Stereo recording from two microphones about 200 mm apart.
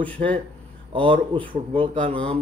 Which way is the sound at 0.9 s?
25° right (ahead or behind).